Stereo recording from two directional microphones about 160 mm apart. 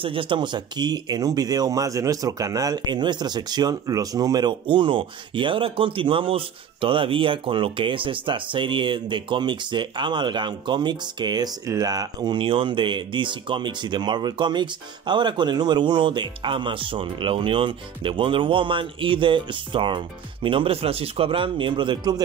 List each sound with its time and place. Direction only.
0.0 s speech: 35° right (ahead or behind)